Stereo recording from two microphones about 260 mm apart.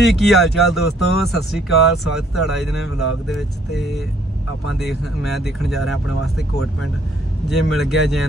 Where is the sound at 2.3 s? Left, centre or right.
Centre.